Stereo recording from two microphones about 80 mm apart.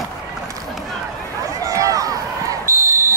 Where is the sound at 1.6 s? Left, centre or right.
Right.